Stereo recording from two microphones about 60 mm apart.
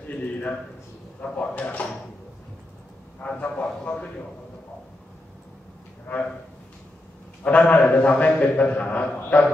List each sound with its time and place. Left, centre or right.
0.0 s a sound: left
1.2 s a man's voice: left
3.3 s a man's voice: left
6.0 s speech: left
7.4 s a man's voice: left